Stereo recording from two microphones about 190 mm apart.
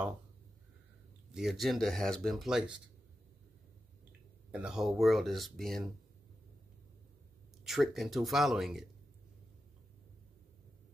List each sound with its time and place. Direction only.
1.3 s speech: centre (ahead or behind)
4.5 s speech: 5° right (ahead or behind)
7.6 s speech: centre (ahead or behind)